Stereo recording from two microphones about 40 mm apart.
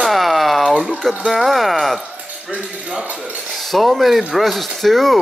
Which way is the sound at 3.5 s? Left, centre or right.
Centre.